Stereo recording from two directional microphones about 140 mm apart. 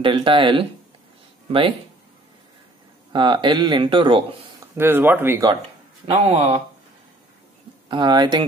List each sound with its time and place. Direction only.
0.0 s speech: 35° right (ahead or behind)
3.1 s speech: 35° right (ahead or behind)
4.7 s speech: 15° right (ahead or behind)
6.0 s speech: 50° right (ahead or behind)
7.9 s speech: 30° right (ahead or behind)